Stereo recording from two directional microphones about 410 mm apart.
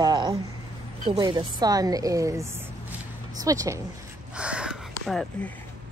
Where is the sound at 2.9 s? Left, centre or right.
Centre.